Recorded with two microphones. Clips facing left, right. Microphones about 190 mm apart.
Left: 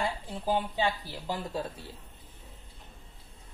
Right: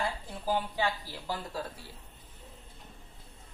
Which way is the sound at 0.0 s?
15° left (ahead or behind).